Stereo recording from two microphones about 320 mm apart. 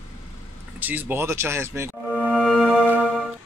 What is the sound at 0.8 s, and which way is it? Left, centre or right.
Speech, centre.